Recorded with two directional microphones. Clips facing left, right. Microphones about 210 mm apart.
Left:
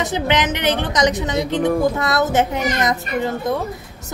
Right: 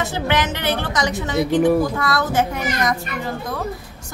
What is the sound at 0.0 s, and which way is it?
A woman's voice, 20° left (ahead or behind).